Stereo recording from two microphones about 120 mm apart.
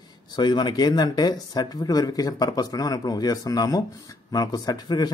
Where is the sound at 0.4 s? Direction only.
40° left (ahead or behind).